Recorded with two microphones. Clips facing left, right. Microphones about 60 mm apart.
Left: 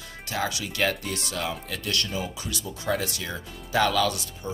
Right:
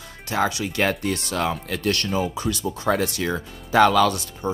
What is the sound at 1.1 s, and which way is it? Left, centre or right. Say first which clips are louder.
Speech: right 6 dB; right.